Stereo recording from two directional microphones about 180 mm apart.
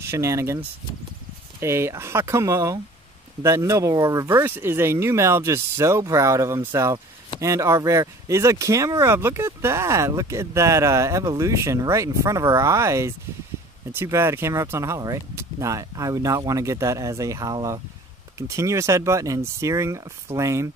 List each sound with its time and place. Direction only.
0.0 s speech: 15° right (ahead or behind)
1.6 s speech: 15° right (ahead or behind)